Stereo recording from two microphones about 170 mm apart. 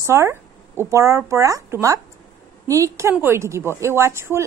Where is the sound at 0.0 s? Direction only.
15° right (ahead or behind).